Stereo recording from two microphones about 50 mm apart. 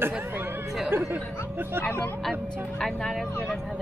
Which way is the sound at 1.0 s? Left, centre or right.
Right.